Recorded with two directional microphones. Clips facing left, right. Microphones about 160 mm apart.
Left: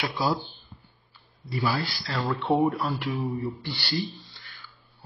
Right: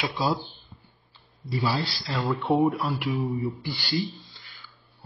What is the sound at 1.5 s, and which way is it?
Speech, 20° right (ahead or behind).